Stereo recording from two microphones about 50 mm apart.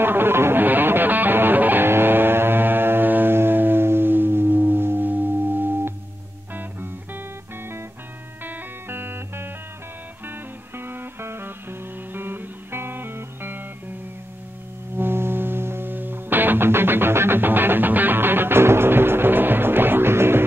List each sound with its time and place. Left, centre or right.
0.0 s music: right
8.5 s music: right
10.8 s music: right
15.0 s music: right